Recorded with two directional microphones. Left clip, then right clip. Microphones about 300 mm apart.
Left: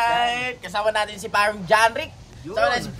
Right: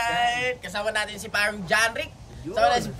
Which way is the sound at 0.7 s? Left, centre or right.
Centre.